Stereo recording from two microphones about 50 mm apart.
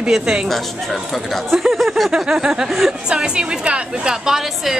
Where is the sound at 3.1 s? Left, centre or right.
Centre.